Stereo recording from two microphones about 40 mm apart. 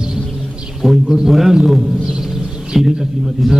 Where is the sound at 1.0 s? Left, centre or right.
Centre.